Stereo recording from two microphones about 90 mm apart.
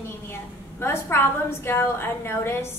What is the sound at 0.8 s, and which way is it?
A woman's voice, 25° left (ahead or behind).